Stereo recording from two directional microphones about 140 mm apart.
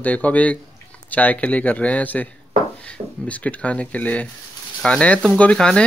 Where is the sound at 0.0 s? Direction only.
10° left (ahead or behind).